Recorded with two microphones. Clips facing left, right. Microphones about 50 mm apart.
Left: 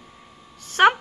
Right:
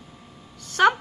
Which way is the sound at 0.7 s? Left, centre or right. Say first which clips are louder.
Left 2 dB; left.